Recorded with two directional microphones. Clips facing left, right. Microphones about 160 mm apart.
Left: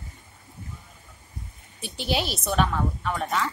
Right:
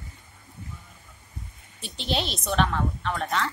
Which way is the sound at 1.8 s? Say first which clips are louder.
Left 2 dB; 5° left (ahead or behind).